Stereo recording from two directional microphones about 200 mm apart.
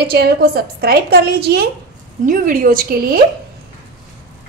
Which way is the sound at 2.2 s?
45° right (ahead or behind).